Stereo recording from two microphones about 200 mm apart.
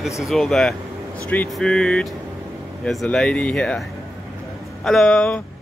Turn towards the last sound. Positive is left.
turn(degrees=5)  # may be behind; listen again after turning